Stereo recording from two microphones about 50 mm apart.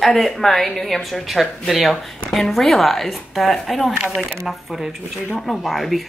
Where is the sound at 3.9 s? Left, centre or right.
Centre.